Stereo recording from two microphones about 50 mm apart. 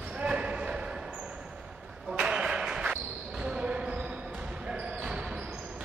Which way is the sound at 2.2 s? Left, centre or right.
Centre.